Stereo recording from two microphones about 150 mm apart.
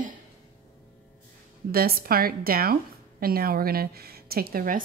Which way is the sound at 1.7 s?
85° right.